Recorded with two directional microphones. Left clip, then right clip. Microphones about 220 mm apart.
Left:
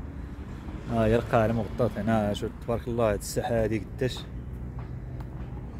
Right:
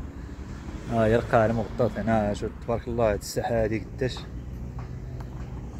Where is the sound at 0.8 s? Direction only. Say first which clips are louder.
Right 2 dB; centre (ahead or behind).